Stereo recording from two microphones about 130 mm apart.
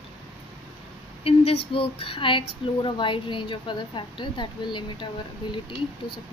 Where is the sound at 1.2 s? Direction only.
50° left (ahead or behind).